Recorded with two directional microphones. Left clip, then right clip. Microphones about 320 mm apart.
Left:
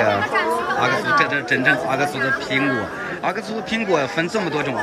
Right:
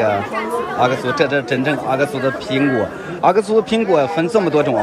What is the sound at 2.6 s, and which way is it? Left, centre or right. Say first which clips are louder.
Speech: right 6 dB; centre.